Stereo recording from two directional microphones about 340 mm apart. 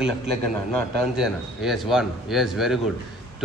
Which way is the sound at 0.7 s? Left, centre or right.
Centre.